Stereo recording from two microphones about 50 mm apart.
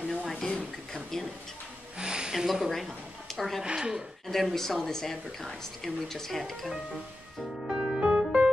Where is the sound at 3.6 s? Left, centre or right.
Centre.